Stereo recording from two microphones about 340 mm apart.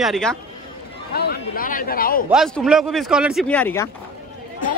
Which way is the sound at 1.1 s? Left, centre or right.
Left.